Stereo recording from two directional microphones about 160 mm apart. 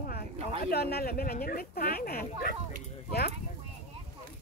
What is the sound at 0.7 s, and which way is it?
Speech, 80° left.